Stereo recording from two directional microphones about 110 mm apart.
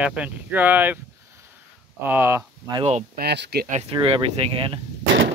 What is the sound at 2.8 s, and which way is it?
Speech, 75° right (ahead or behind).